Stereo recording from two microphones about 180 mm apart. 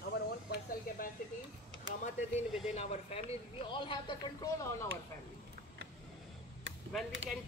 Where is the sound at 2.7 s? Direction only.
35° left (ahead or behind).